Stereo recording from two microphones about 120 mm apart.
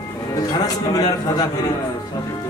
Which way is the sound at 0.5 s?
30° left (ahead or behind).